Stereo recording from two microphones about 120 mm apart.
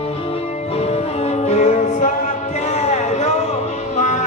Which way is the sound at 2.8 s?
70° left (ahead or behind).